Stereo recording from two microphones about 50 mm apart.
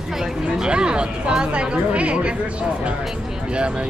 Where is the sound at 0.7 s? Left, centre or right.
Centre.